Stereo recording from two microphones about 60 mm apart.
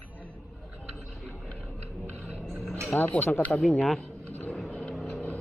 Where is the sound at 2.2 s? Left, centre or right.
Centre.